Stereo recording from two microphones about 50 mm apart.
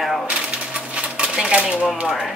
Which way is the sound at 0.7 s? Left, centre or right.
Right.